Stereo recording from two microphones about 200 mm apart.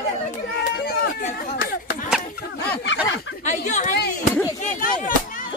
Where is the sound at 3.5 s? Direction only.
35° left (ahead or behind).